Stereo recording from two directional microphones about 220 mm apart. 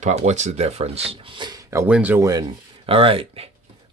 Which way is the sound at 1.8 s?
5° right (ahead or behind).